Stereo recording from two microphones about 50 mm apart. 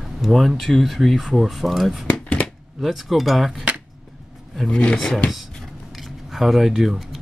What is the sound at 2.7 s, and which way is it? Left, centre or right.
Speech, centre.